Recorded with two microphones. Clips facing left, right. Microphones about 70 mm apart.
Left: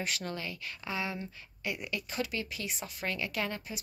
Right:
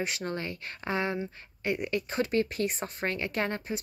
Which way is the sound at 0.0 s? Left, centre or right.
Right.